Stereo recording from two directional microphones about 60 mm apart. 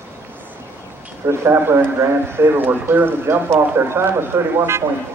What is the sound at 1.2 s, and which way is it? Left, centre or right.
Speech, right.